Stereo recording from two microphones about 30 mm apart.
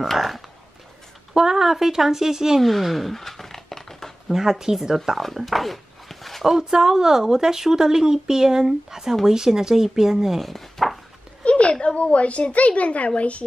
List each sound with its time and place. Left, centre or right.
1.3 s speech: centre
2.6 s a sound: centre
4.3 s speech: centre
4.9 s speech: centre
5.2 s a sound: centre
6.4 s speech: centre
10.4 s chopping: centre
11.4 s a sound: left
11.8 s a woman's voice: left